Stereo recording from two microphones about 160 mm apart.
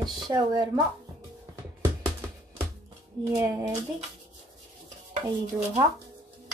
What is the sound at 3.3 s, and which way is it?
Speech, 20° right (ahead or behind).